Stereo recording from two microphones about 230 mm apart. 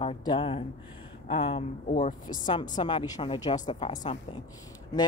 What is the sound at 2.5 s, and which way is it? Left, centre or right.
Speech, centre.